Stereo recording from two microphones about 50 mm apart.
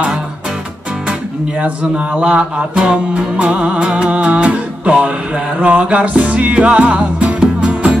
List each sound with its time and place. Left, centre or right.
1.6 s music: right